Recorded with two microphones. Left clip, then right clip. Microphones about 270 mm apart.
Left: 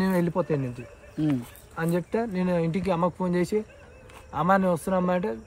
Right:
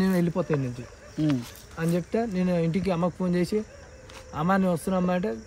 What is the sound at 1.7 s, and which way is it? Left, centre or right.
Speech, centre.